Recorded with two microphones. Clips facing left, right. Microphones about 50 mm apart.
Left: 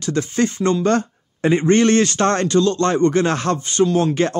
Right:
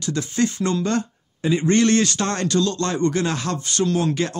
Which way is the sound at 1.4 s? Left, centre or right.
Left.